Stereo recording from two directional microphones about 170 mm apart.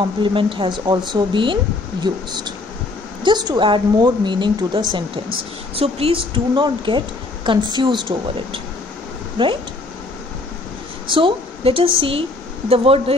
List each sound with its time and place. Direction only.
0.0 s speech: 30° right (ahead or behind)
11.1 s a woman's voice: 30° right (ahead or behind)